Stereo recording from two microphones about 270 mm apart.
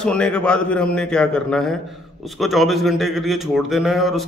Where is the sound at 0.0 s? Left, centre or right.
Centre.